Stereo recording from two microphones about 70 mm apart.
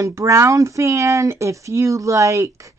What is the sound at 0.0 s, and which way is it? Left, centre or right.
A woman's voice, right.